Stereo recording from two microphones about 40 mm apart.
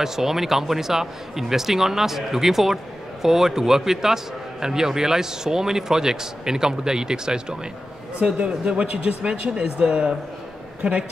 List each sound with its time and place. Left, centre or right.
0.0 s speech: centre
8.7 s speech: right